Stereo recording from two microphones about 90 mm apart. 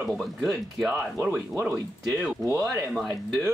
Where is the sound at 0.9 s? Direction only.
20° right (ahead or behind).